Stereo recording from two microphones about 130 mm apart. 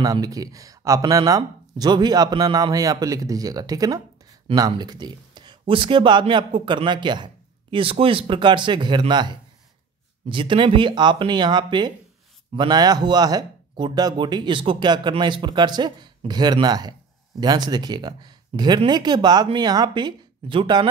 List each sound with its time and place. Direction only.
0.0 s speech: 30° right (ahead or behind)